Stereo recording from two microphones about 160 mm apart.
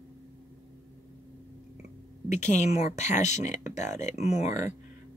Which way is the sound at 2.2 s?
45° left (ahead or behind).